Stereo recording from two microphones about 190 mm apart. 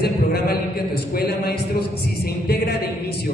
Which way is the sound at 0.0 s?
55° left (ahead or behind).